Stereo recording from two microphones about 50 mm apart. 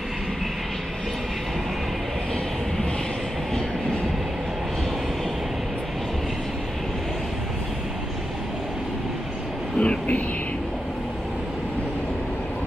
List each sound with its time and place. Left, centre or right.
9.8 s vehicle: left